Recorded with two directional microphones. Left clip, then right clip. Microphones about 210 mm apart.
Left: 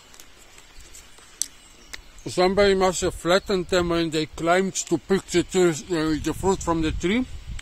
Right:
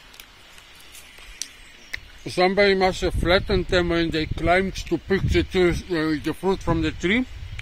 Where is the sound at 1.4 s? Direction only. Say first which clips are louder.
Left 3 dB; 25° left (ahead or behind).